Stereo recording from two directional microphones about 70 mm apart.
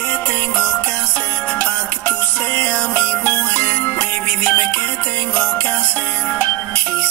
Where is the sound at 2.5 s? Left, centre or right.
Centre.